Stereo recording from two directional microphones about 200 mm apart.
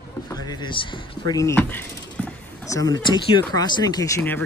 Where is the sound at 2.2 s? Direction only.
5° left (ahead or behind).